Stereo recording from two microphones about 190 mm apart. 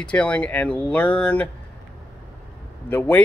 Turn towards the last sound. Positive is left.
turn(degrees=10)  # may be behind; listen again after turning